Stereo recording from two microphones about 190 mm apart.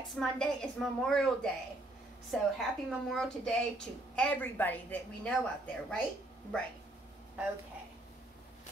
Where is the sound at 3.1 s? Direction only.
5° left (ahead or behind).